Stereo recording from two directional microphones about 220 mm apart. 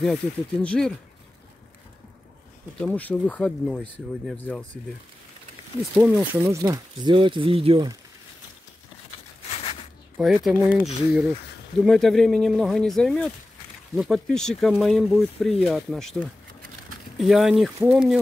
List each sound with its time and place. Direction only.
0.0 s speech: 5° left (ahead or behind)
2.9 s speech: 5° left (ahead or behind)
5.9 s speech: 5° right (ahead or behind); by 8.0 s 20° right (ahead or behind)
9.5 s a sound: 25° left (ahead or behind)
10.1 s speech: centre (ahead or behind)